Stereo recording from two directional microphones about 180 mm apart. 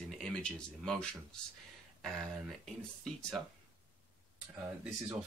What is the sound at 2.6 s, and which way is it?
Speech, 5° left (ahead or behind).